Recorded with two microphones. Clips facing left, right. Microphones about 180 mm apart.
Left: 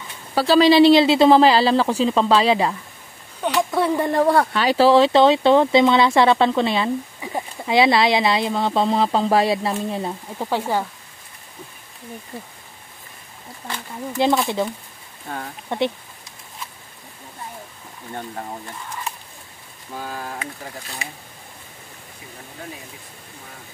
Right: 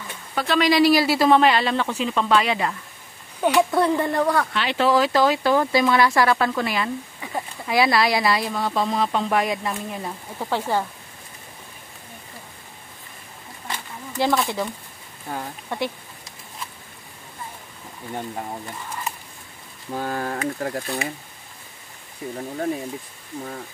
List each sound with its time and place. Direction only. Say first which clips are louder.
0.3 s speech: left 6 dB; 30° left (ahead or behind)
3.4 s speech: right 2 dB; centre (ahead or behind)
4.0 s speech: left 4 dB; 25° left (ahead or behind)
10.4 s speech: left 1 dB; 15° left (ahead or behind)
14.1 s speech: left 3 dB; 20° left (ahead or behind)
15.7 s speech: left 5 dB; 25° left (ahead or behind)
20.0 s speech: right 5 dB; 55° right (ahead or behind)